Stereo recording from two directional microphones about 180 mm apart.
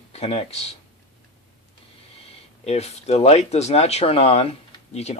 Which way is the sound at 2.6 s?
35° left (ahead or behind).